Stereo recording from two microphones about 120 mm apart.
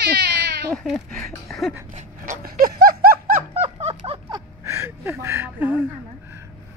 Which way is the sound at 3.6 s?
55° right (ahead or behind).